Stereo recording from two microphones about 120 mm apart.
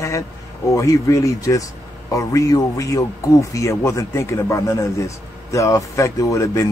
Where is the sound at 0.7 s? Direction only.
25° left (ahead or behind).